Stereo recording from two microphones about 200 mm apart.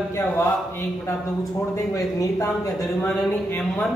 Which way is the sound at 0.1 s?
10° left (ahead or behind).